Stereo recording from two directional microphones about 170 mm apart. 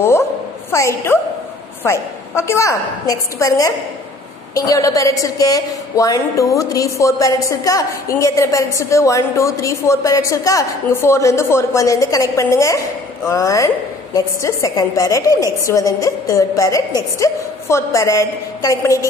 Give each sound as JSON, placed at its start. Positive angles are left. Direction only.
{"t": 0.7, "sound": "a woman's voice", "side_deg": 15}